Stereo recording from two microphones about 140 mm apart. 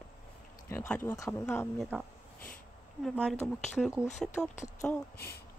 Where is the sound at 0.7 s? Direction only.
15° left (ahead or behind).